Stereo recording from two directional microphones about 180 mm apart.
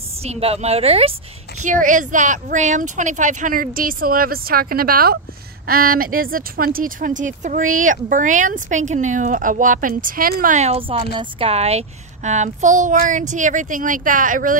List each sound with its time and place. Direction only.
0.2 s a child's voice: 35° right (ahead or behind)
1.6 s a child's voice: 45° right (ahead or behind)